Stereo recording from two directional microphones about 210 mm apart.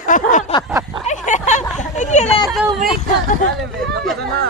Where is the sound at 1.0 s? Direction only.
35° left (ahead or behind).